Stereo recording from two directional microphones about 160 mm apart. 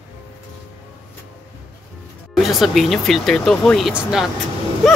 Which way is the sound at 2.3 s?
Centre (ahead or behind).